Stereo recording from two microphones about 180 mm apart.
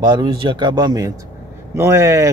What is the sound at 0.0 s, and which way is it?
Speech, 25° right (ahead or behind).